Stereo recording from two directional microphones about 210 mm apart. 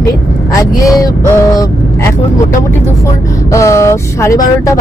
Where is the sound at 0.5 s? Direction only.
15° left (ahead or behind).